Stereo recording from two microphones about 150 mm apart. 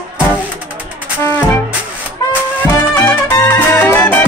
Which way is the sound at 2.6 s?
15° left (ahead or behind).